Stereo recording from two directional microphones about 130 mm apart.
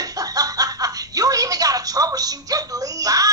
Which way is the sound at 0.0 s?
30° right (ahead or behind).